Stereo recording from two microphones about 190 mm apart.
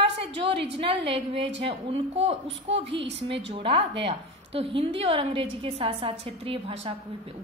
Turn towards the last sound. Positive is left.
turn(degrees=-30)  # may be behind; listen again after turning